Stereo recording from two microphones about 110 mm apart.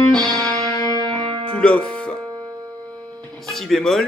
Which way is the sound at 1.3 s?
50° right (ahead or behind).